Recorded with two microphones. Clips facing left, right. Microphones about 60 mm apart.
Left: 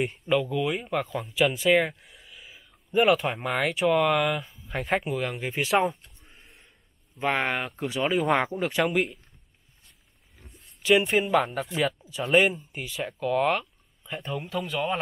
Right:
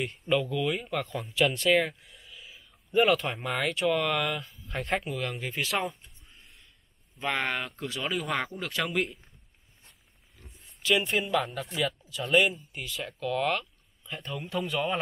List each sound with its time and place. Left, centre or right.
0.1 s speech: centre
7.2 s speech: centre
10.4 s a sound: centre
10.8 s speech: centre
14.5 s speech: centre